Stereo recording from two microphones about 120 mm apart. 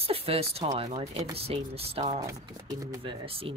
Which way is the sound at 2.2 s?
30° right (ahead or behind).